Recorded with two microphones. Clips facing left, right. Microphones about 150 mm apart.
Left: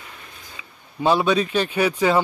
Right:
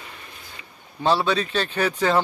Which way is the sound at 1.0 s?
10° left (ahead or behind).